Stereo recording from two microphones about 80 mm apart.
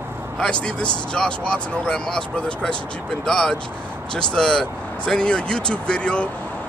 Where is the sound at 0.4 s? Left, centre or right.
Centre.